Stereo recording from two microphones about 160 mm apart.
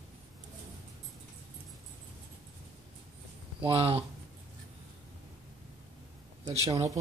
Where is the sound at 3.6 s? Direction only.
35° right (ahead or behind).